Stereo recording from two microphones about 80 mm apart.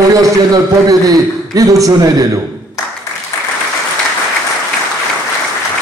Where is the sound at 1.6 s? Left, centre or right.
Right.